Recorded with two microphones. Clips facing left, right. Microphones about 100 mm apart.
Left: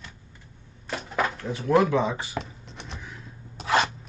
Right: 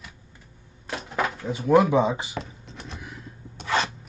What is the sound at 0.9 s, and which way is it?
Speech, centre (ahead or behind).